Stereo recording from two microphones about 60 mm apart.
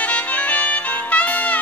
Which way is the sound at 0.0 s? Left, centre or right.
Left.